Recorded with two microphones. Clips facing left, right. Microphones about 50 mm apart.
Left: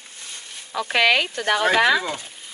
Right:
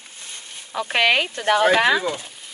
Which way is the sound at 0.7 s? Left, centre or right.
Right.